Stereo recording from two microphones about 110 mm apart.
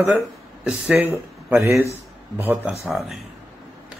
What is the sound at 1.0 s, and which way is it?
Speech, 20° right (ahead or behind).